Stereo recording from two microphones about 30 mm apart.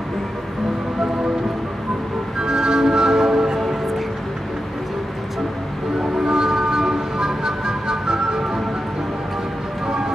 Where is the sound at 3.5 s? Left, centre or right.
Centre.